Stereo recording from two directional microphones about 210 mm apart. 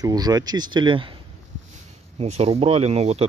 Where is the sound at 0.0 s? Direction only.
20° right (ahead or behind).